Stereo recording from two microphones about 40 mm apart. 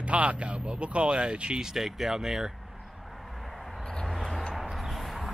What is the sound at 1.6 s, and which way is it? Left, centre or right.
Speech, centre.